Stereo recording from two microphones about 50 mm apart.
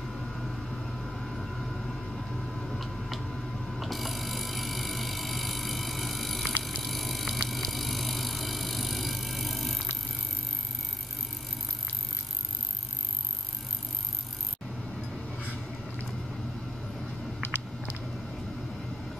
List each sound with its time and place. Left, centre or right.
0.0 s vehicle: centre
6.8 s bicycle: centre
7.4 s vehicle: centre
17.4 s a sound: left